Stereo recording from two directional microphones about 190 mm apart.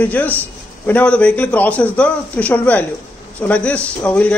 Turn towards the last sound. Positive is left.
turn(degrees=5)  # may be behind; listen again after turning